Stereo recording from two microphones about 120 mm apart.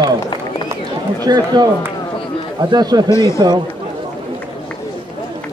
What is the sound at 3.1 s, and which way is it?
Speech, 25° left (ahead or behind).